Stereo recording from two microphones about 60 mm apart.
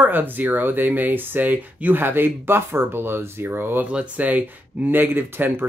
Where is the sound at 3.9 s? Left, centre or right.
Right.